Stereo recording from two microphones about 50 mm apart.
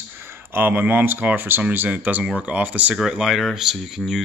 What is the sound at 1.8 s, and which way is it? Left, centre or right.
Speech, right.